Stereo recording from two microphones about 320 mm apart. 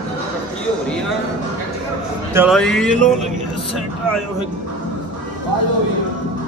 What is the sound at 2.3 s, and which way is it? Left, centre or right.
Speech, centre.